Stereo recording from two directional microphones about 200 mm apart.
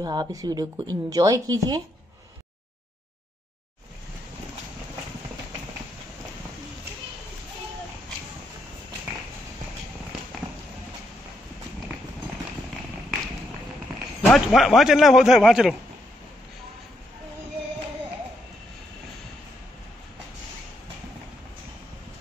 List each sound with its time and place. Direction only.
0.0 s a woman's voice: 20° right (ahead or behind)
14.3 s a man's voice: centre (ahead or behind)